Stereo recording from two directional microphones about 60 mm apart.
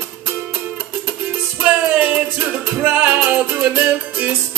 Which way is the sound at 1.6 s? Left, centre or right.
Right.